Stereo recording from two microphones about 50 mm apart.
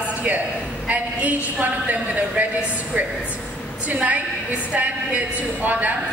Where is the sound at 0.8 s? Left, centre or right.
Right.